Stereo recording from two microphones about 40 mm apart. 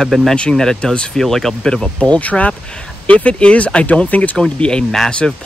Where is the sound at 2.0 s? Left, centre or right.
Left.